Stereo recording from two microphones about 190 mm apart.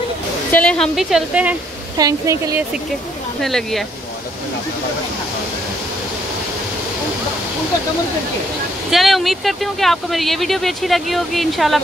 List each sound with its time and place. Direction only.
0.5 s speech: 5° left (ahead or behind)
2.0 s speech: 20° right (ahead or behind)
3.3 s speech: centre (ahead or behind)
8.9 s speech: centre (ahead or behind)